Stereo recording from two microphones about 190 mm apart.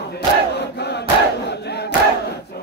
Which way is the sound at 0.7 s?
60° left (ahead or behind).